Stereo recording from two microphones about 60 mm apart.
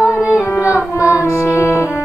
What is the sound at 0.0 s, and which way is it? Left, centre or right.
Carnatic music, right.